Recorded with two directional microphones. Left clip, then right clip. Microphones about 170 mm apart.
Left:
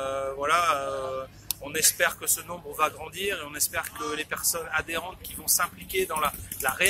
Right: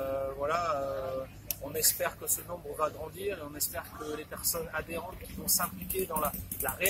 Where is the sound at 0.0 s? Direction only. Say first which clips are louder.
Left 4 dB; 10° left (ahead or behind).